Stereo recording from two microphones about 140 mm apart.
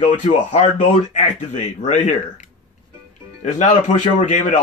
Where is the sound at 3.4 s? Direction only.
55° left (ahead or behind).